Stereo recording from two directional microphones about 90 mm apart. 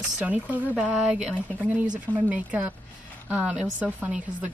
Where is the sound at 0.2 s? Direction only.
15° right (ahead or behind).